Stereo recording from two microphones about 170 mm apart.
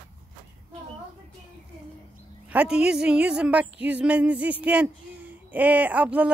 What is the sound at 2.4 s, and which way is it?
A woman's voice, 5° right (ahead or behind).